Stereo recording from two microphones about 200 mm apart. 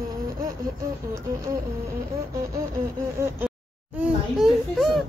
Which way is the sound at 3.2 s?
15° right (ahead or behind).